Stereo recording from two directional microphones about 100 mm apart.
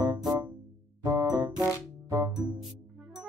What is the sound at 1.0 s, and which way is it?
Music, 35° right (ahead or behind).